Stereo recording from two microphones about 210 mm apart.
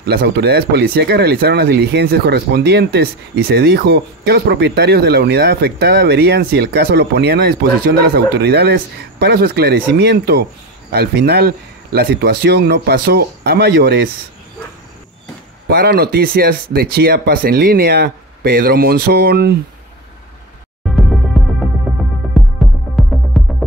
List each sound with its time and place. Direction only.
0.0 s speech: 45° right (ahead or behind)
15.7 s speech: 45° right (ahead or behind)
21.4 s music: centre (ahead or behind)